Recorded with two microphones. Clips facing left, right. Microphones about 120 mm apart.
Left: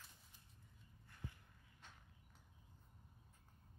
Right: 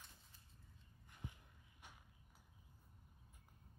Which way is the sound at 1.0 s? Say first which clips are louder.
Even; 15° right (ahead or behind).